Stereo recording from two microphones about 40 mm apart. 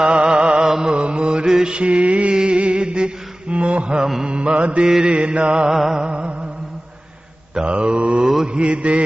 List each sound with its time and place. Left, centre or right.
0.0 s music: right
1.0 s mantra: right
4.8 s mantra: right
5.8 s music: centre
6.0 s music: right
7.5 s mantra: right